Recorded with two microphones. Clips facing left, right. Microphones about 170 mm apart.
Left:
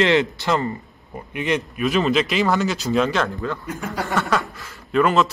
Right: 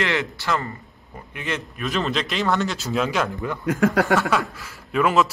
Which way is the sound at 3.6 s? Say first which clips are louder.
Right 9 dB; 90° right.